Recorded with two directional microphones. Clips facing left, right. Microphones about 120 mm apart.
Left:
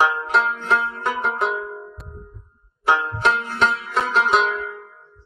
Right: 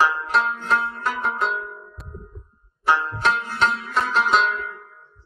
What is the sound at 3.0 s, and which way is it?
Music, 20° left (ahead or behind).